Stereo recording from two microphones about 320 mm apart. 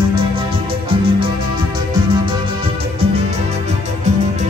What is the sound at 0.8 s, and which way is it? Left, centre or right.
Music, centre.